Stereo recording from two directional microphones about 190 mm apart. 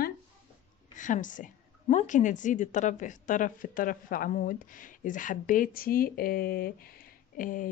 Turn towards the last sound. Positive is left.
turn(degrees=45)  # may be behind; listen again after turning